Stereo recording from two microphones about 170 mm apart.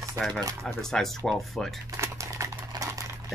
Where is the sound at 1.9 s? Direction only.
20° right (ahead or behind).